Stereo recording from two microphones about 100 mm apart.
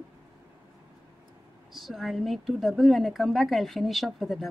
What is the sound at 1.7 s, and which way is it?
Speech, centre (ahead or behind).